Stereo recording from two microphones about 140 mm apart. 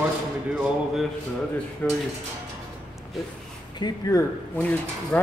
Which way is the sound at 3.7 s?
30° left (ahead or behind).